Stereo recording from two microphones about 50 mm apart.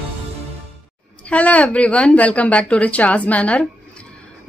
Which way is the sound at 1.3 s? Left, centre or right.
Left.